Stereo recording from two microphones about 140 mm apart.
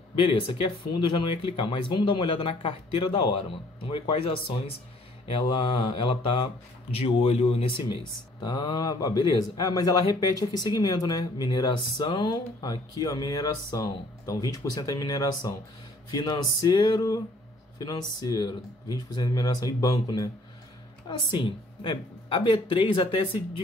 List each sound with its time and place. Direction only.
0.1 s speech: 40° left (ahead or behind)
21.3 s speech: 35° left (ahead or behind)